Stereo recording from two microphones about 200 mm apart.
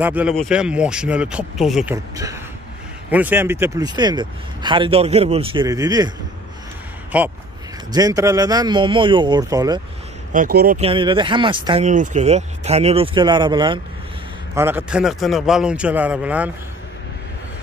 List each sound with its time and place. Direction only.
0.0 s speech: 5° right (ahead or behind)
3.1 s speech: 10° right (ahead or behind)
7.1 s speech: 5° right (ahead or behind)
7.9 s speech: 20° right (ahead or behind)
10.3 s speech: 45° right (ahead or behind)
10.8 s speech: 25° right (ahead or behind)
11.8 s speech: 40° right (ahead or behind); by 13.7 s 20° right (ahead or behind)
14.5 s speech: 10° right (ahead or behind)